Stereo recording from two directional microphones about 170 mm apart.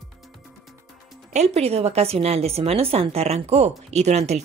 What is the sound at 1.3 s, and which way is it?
A woman's voice, 40° right (ahead or behind).